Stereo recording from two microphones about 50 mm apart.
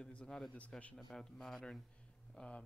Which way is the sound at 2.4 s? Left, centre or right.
Left.